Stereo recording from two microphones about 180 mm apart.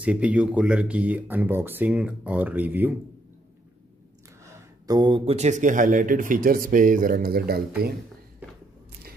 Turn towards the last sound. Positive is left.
turn(degrees=-60)  # may be behind; listen again after turning